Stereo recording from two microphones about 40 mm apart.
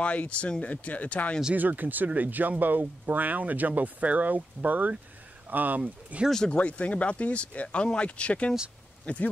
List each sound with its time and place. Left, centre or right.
0.0 s speech: left
1.5 s speech: right
5.8 s speech: right
6.5 s speech: left